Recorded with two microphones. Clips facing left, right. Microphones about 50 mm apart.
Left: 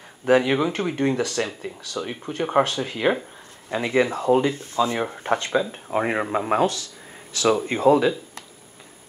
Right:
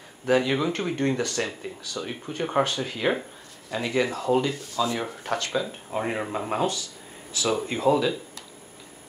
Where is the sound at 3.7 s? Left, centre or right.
Left.